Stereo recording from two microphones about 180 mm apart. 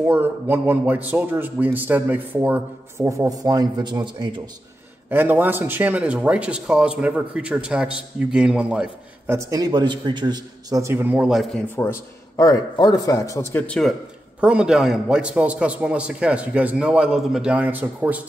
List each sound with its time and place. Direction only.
0.0 s a man's voice: 10° right (ahead or behind)
5.1 s a man's voice: 10° right (ahead or behind)
9.4 s a man's voice: 20° right (ahead or behind); by 11.6 s 5° right (ahead or behind)
11.7 s a man's voice: 15° left (ahead or behind)
14.4 s a man's voice: 5° right (ahead or behind)